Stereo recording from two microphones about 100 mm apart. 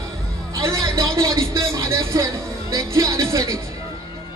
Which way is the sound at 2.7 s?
30° right (ahead or behind).